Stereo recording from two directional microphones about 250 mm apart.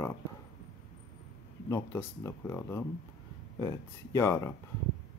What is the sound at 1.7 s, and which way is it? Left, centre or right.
Speech, centre.